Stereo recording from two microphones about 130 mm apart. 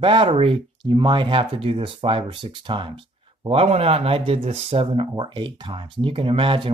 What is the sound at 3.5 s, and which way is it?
Speech, 50° right (ahead or behind).